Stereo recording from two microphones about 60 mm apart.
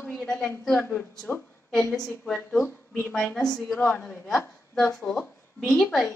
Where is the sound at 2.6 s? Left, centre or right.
Left.